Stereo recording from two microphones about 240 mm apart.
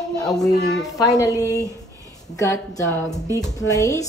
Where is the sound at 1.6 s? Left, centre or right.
Centre.